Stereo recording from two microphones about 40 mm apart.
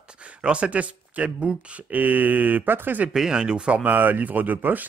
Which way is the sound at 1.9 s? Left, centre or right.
Right.